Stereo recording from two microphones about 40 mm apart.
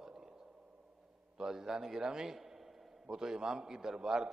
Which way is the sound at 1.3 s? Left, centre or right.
Centre.